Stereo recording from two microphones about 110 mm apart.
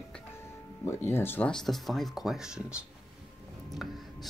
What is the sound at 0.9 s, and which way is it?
Speech, 20° left (ahead or behind).